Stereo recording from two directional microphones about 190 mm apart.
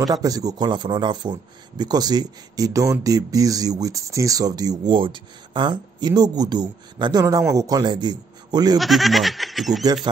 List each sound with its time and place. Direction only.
0.0 s speech: 20° right (ahead or behind)
8.7 s speech: centre (ahead or behind)